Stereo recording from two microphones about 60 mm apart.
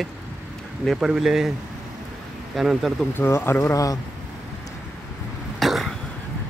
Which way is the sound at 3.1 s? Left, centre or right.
Left.